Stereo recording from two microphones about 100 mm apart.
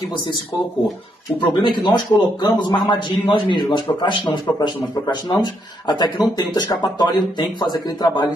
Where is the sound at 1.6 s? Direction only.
45° left (ahead or behind).